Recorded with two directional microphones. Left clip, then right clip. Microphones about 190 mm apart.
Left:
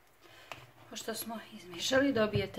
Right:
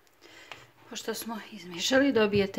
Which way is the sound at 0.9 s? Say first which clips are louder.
Right 5 dB; 45° right (ahead or behind).